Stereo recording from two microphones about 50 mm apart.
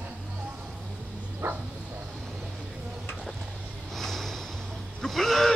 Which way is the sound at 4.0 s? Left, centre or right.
Centre.